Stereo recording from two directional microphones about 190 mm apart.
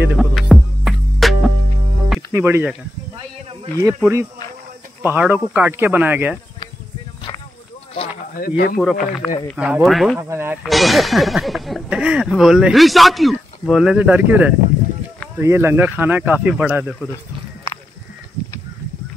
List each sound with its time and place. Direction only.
0.0 s music: 5° right (ahead or behind)
2.3 s speech: 10° right (ahead or behind)
4.0 s speech: 15° right (ahead or behind)
8.4 s speech: 50° left (ahead or behind)
8.7 s speech: centre (ahead or behind)
10.3 s speech: 10° right (ahead or behind)
10.6 s speech: centre (ahead or behind)